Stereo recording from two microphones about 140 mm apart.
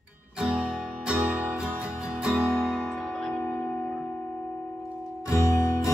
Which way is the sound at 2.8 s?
5° left (ahead or behind).